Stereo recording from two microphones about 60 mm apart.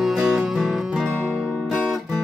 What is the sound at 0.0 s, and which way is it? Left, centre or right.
Music, centre.